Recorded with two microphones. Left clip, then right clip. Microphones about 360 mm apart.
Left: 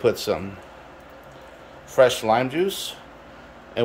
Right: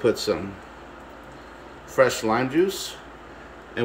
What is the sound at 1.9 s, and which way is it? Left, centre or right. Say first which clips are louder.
Speech: left 3 dB; centre.